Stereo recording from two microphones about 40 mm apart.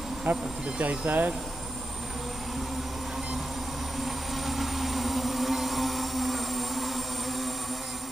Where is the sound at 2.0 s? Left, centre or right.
Centre.